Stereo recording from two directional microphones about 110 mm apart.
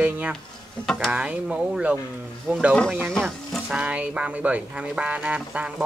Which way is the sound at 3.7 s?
10° right (ahead or behind).